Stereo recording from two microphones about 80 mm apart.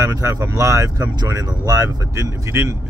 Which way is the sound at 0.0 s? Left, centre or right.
Right.